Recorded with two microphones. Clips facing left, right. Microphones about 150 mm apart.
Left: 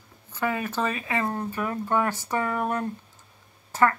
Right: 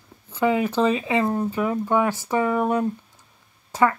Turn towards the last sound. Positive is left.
turn(degrees=-15)  # may be behind; listen again after turning